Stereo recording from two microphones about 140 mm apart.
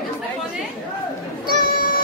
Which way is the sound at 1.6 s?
90° left.